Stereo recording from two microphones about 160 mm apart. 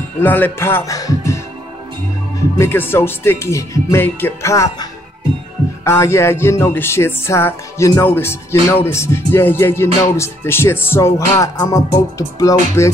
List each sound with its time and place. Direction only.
0.2 s music: 10° left (ahead or behind)
2.6 s music: 15° left (ahead or behind)
5.9 s music: 15° left (ahead or behind)